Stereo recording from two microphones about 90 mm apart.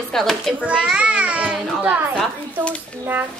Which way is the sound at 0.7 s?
10° right (ahead or behind).